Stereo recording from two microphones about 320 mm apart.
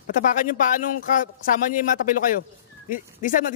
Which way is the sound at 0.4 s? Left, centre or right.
Left.